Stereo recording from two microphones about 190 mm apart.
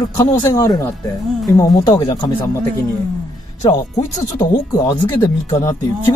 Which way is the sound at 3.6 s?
20° left (ahead or behind).